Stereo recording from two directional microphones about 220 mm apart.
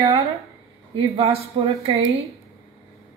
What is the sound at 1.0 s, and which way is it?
A woman's voice, 25° right (ahead or behind).